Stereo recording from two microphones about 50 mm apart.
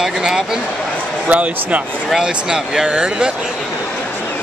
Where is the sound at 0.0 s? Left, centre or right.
Centre.